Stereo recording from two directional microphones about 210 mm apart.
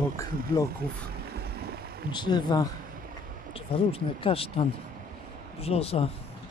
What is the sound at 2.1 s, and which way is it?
Speech, 20° left (ahead or behind).